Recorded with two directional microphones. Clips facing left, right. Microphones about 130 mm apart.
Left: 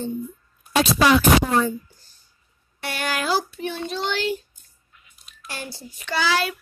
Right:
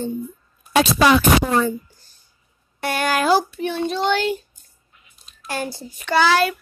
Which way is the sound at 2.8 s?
50° right (ahead or behind).